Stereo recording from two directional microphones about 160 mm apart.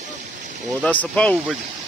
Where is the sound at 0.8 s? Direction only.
10° left (ahead or behind).